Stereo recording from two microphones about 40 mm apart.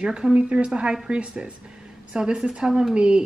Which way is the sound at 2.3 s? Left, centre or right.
Centre.